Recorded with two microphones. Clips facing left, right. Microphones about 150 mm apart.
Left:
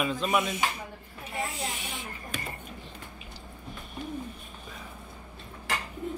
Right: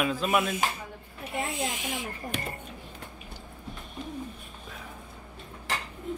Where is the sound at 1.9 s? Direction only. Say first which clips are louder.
Right 5 dB; 90° right.